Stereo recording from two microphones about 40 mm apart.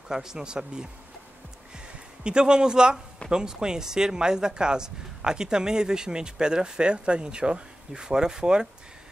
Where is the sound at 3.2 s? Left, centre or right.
Centre.